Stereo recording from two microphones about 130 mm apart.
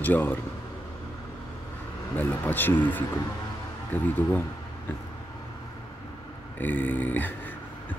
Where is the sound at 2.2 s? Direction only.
15° left (ahead or behind).